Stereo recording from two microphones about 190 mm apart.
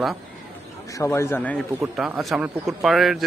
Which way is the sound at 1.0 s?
15° left (ahead or behind).